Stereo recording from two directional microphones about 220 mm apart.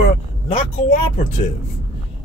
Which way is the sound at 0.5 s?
25° left (ahead or behind).